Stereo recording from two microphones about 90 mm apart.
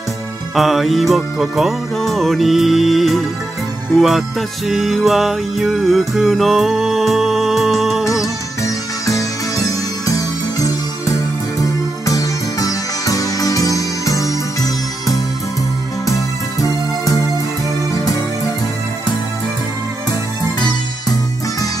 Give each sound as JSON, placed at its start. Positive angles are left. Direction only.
{"t": 0.6, "sound": "music", "side_deg": 0}
{"t": 8.6, "sound": "music", "side_deg": 35}
{"t": 16.1, "sound": "music", "side_deg": 40}
{"t": 17.9, "sound": "music", "side_deg": 40}